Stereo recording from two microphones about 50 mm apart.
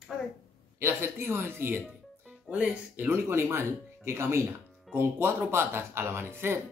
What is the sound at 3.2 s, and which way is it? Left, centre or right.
Speech, right.